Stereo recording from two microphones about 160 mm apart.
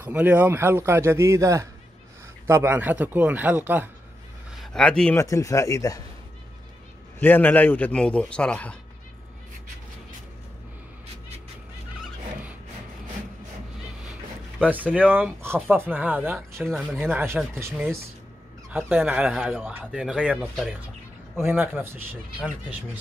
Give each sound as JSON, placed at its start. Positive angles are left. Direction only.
{"t": 0.0, "sound": "speech", "side_deg": -10}
{"t": 4.6, "sound": "speech", "side_deg": 5}
{"t": 5.1, "sound": "speech", "side_deg": 20}
{"t": 7.2, "sound": "a man's voice", "side_deg": 10}
{"t": 14.6, "sound": "speech", "side_deg": -10}
{"t": 16.5, "sound": "speech", "side_deg": 0}
{"t": 17.1, "sound": "speech", "side_deg": -15}
{"t": 21.4, "sound": "speech", "side_deg": -15}